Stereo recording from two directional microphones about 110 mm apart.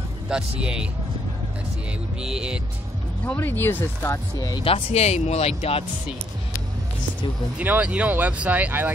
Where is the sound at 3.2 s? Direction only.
15° left (ahead or behind).